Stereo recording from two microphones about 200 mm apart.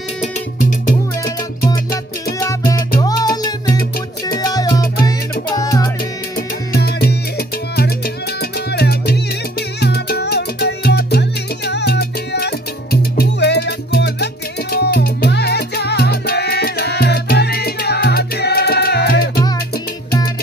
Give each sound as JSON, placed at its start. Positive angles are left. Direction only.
{"t": 0.2, "sound": "music", "side_deg": 40}
{"t": 3.0, "sound": "music", "side_deg": 20}
{"t": 4.3, "sound": "salsa music", "side_deg": 20}
{"t": 5.6, "sound": "music", "side_deg": 15}
{"t": 6.7, "sound": "music", "side_deg": 50}